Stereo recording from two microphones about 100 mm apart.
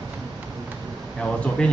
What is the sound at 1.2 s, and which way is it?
Speech, 10° left (ahead or behind).